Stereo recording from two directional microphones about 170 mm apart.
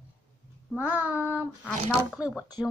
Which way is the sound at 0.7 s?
10° right (ahead or behind).